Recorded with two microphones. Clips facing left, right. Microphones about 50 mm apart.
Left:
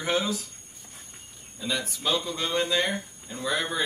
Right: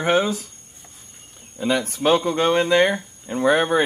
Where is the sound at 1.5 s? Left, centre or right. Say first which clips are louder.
Right 9 dB; right.